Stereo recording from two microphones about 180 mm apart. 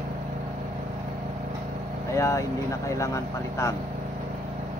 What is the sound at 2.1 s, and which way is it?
Speech, 15° left (ahead or behind).